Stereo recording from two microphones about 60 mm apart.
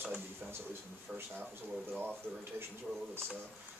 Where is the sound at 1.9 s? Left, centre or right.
Right.